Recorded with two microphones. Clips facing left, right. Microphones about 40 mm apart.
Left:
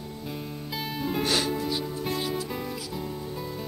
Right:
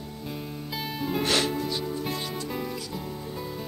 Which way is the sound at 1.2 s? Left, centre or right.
Right.